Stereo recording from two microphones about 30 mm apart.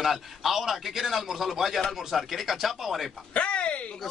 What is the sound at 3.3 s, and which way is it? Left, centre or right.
Speech, left.